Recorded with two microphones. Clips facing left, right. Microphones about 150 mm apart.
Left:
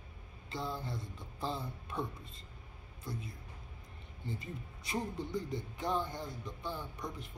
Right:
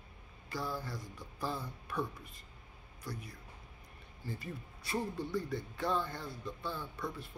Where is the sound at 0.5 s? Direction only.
25° left (ahead or behind).